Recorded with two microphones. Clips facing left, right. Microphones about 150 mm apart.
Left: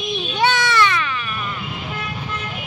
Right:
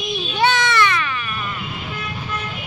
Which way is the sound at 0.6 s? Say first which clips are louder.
Even; 15° left (ahead or behind).